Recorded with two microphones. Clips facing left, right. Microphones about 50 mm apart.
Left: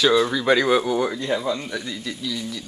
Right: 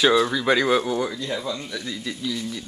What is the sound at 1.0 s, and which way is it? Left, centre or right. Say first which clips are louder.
Speech: left 4 dB; left.